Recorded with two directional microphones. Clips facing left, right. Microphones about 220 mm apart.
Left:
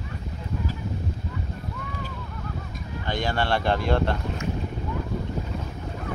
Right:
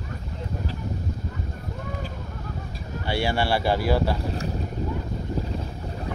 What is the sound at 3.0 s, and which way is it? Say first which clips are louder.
Speech: right 2 dB; 10° right (ahead or behind).